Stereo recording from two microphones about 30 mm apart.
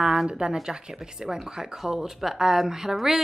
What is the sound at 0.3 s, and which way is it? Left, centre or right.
A woman's voice, right.